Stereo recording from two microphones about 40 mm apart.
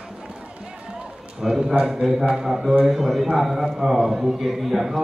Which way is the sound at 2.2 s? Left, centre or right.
Centre.